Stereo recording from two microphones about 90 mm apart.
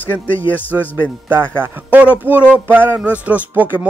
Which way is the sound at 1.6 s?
20° right (ahead or behind).